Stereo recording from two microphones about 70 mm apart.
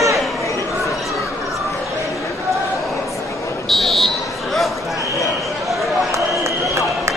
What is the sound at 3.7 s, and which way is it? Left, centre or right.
Buzzer, centre.